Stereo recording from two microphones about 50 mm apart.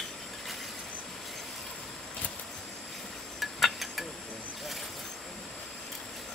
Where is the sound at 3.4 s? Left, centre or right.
Centre.